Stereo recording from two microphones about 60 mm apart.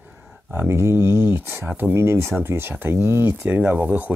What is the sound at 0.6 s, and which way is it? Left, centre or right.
Speech, right.